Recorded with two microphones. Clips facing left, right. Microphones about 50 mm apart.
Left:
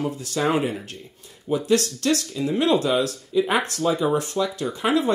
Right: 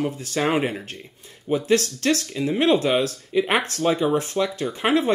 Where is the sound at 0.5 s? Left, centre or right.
Right.